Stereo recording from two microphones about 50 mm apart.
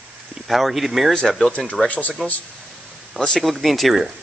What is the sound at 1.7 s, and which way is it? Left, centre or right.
Speech, left.